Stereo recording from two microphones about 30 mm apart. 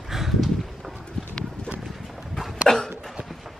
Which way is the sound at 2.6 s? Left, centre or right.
Centre.